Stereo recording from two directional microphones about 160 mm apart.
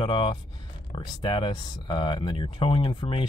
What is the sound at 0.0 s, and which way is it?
Speech, 30° left (ahead or behind).